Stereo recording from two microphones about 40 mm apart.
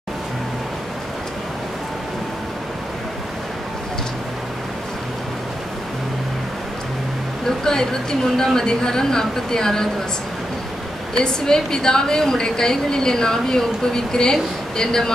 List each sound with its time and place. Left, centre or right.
7.4 s a sound: centre
8.4 s a woman's voice: centre
11.1 s a woman's voice: centre